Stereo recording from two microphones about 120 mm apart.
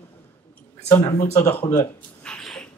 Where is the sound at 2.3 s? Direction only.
5° left (ahead or behind).